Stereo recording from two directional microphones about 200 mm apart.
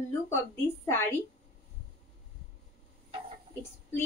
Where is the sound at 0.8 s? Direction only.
10° left (ahead or behind).